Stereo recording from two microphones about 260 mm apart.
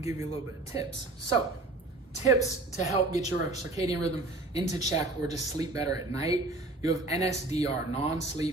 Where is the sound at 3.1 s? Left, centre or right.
Left.